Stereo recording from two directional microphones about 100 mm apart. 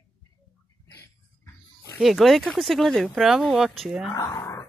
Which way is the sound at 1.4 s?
30° left (ahead or behind).